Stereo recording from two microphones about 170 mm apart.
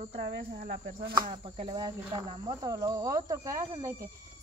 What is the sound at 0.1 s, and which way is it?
Speech, 60° right (ahead or behind).